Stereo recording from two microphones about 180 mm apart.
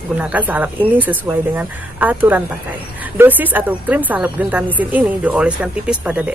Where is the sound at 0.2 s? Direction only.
10° right (ahead or behind).